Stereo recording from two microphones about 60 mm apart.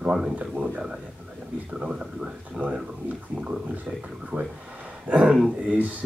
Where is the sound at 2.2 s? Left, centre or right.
Right.